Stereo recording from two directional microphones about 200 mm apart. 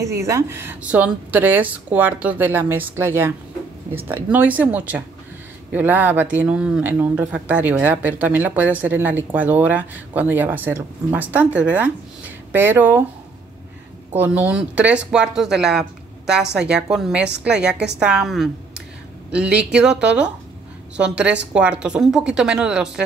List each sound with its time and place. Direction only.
0.0 s speech: 15° right (ahead or behind)
14.1 s speech: 10° right (ahead or behind)